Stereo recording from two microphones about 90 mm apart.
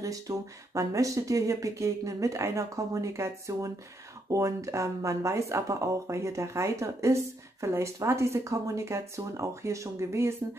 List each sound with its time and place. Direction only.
0.0 s speech: 40° right (ahead or behind)